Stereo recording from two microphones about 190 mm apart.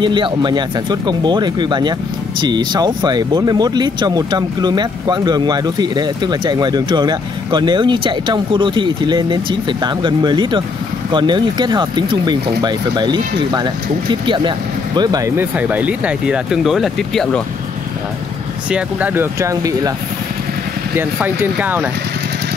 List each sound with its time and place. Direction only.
0.0 s speech: 25° right (ahead or behind); by 17.4 s centre (ahead or behind)
18.7 s speech: 5° right (ahead or behind)
21.0 s speech: 10° right (ahead or behind)